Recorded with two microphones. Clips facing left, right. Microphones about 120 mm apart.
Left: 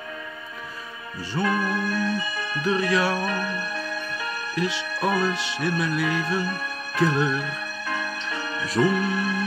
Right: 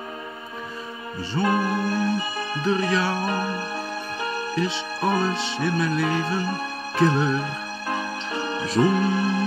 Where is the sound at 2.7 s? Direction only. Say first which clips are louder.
Even; 5° left (ahead or behind).